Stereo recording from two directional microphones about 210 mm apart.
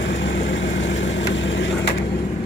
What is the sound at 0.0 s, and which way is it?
Vehicle, 60° left (ahead or behind).